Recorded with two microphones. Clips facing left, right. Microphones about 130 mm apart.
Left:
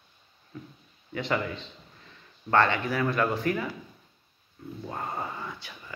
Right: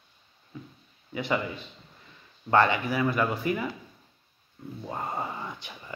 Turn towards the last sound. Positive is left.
turn(degrees=-20)  # may be behind; listen again after turning